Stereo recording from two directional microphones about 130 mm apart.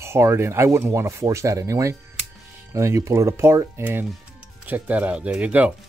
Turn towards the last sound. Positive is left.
turn(degrees=-10)  # may be behind; listen again after turning